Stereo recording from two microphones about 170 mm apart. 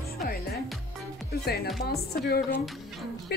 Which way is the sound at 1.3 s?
65° left (ahead or behind).